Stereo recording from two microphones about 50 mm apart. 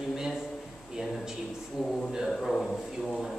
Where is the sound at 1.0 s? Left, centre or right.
Centre.